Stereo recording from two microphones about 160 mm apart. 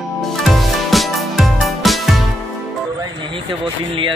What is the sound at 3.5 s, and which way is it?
Speech, 30° right (ahead or behind).